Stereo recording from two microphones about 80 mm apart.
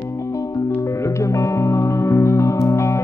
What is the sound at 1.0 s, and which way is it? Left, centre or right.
Music, left.